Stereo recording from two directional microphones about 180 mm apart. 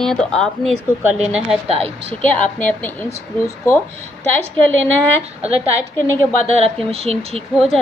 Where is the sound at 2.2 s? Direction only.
10° left (ahead or behind).